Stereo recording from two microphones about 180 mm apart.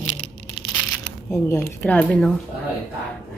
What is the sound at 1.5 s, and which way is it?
Speech, 5° left (ahead or behind).